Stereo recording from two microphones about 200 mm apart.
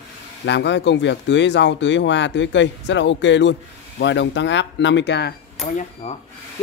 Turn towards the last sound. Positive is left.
turn(degrees=40)  # may be behind; listen again after turning